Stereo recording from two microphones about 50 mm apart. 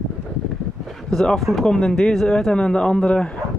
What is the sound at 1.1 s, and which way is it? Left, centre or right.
A man's voice, centre.